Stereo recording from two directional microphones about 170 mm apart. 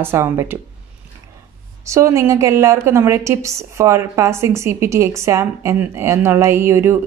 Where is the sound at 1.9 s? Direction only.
15° right (ahead or behind).